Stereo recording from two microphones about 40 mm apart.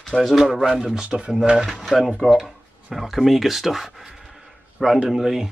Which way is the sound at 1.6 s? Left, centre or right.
Centre.